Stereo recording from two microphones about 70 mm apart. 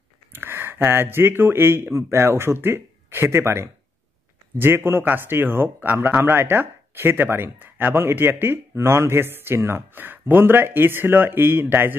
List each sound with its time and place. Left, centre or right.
0.3 s speech: right